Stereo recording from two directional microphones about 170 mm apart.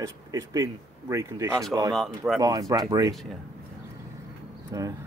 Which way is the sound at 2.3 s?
20° right (ahead or behind).